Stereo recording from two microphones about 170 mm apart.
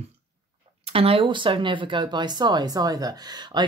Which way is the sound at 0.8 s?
35° right (ahead or behind).